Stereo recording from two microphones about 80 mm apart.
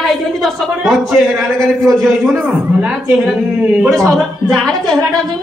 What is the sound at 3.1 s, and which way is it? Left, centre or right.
Speech, centre.